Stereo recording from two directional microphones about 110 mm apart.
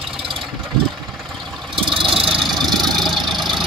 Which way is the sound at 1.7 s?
50° right (ahead or behind).